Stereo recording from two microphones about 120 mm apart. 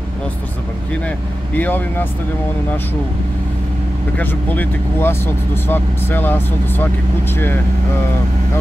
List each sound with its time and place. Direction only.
1.0 s speech: 15° left (ahead or behind)
4.2 s speech: 15° left (ahead or behind)